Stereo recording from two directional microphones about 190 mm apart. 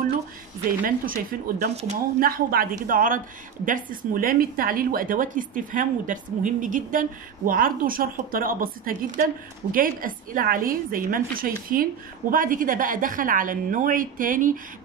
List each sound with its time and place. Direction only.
0.7 s a woman's voice: 45° right (ahead or behind)
1.7 s speech: 35° right (ahead or behind)
2.1 s a woman's voice: 50° right (ahead or behind)